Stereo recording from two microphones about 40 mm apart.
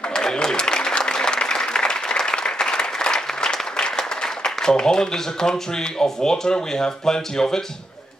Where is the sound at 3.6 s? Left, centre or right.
Centre.